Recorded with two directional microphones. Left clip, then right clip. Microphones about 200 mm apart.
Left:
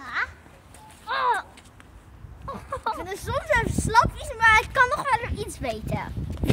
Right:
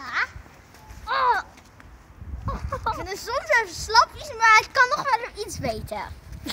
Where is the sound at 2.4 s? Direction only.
15° right (ahead or behind).